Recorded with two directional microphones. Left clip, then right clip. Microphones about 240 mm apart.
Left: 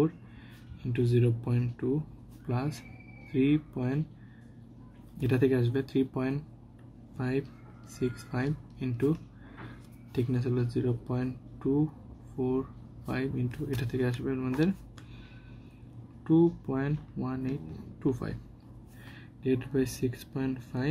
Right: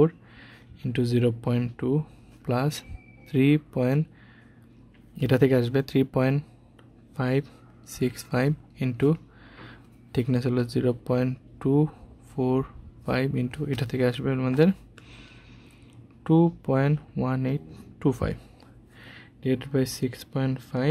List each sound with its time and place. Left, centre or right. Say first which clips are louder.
0.9 s speech: right 4 dB; right
5.2 s speech: right 6 dB; right
10.1 s speech: right 5 dB; right
16.3 s speech: right 3 dB; right